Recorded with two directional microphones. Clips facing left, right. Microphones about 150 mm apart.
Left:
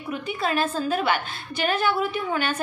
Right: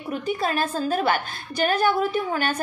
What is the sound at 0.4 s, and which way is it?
A woman's voice, 45° right (ahead or behind).